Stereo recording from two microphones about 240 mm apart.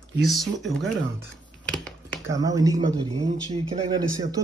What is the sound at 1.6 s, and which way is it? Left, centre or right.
Finger snapping, centre.